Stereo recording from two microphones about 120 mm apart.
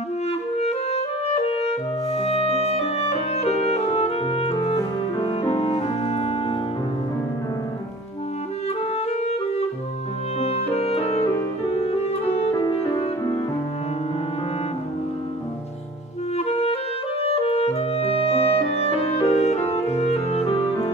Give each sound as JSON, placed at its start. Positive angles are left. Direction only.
{"t": 0.3, "sound": "clarinet", "side_deg": 60}
{"t": 5.5, "sound": "music", "side_deg": 55}
{"t": 9.2, "sound": "clarinet", "side_deg": 60}
{"t": 10.4, "sound": "music", "side_deg": 60}
{"t": 12.7, "sound": "music", "side_deg": 45}
{"t": 16.3, "sound": "clarinet", "side_deg": 60}